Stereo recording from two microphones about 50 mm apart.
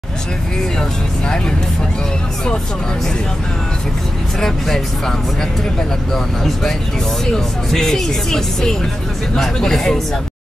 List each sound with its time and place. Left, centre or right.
0.7 s speech: centre
4.4 s speech: centre